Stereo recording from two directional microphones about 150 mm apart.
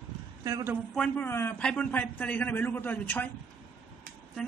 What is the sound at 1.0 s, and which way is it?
A man's voice, 15° left (ahead or behind).